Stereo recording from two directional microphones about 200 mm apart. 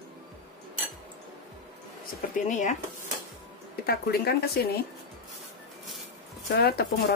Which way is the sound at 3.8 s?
50° left (ahead or behind).